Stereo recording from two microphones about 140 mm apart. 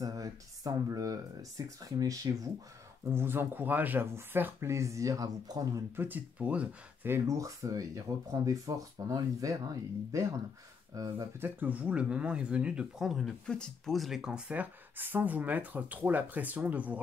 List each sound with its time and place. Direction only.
0.0 s speech: 25° right (ahead or behind)
5.9 s speech: 15° right (ahead or behind)
11.3 s speech: 15° right (ahead or behind)